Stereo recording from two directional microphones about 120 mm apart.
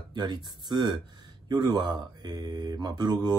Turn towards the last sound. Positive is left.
turn(degrees=-35)  # may be behind; listen again after turning